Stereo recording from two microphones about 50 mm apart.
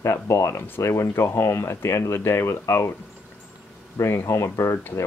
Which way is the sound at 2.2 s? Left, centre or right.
Left.